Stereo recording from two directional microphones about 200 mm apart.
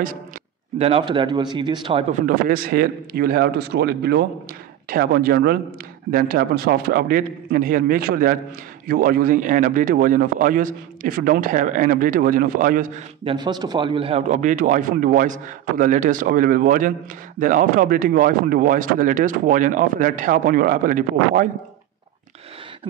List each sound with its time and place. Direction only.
0.7 s speech: 30° right (ahead or behind)
2.2 s a man's voice: 45° right (ahead or behind)
13.2 s a man's voice: 25° right (ahead or behind); by 21.5 s 45° right (ahead or behind)